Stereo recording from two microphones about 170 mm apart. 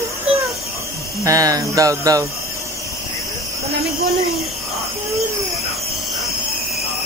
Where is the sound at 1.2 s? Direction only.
20° right (ahead or behind).